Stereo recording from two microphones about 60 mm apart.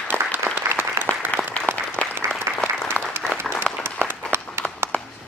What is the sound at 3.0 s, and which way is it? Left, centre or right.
Applause, left.